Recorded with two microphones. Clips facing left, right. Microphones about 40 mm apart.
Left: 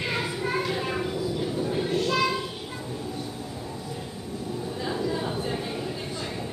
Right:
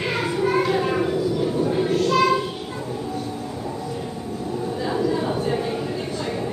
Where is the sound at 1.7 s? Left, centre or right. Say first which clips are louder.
Right 6 dB; centre.